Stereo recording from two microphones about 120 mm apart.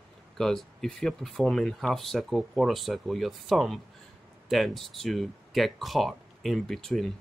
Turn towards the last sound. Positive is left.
turn(degrees=5)  # may be behind; listen again after turning